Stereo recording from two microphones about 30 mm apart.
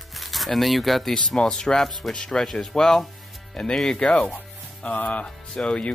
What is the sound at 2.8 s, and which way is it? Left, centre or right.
Speech, centre.